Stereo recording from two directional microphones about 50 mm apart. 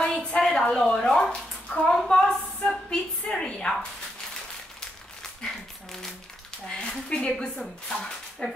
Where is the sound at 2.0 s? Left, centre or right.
Centre.